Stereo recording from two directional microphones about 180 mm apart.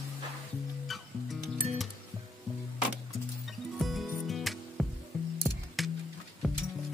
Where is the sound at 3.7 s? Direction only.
Centre (ahead or behind).